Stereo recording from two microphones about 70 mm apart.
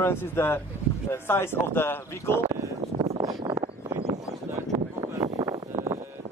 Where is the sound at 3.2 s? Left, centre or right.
Right.